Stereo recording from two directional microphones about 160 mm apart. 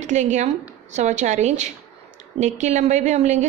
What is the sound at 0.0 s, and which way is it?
A woman's voice, 50° right (ahead or behind).